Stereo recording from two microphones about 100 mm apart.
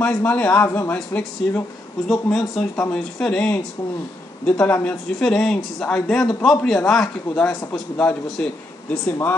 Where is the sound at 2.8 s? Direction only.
10° left (ahead or behind).